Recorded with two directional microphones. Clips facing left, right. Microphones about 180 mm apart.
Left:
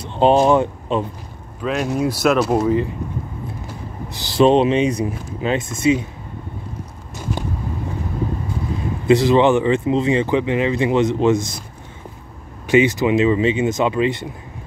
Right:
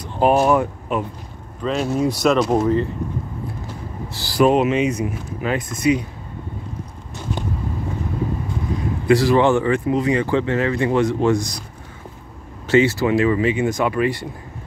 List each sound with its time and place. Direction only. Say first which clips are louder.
0.0 s speech: left 2 dB; 25° left (ahead or behind)
1.6 s speech: even; 5° left (ahead or behind)
4.1 s speech: left 2 dB; 20° left (ahead or behind)
9.0 s speech: left 2 dB; 20° left (ahead or behind)
12.6 s speech: left 1 dB; 15° left (ahead or behind)